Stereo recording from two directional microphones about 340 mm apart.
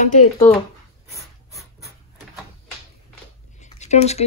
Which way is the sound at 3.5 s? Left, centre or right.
Centre.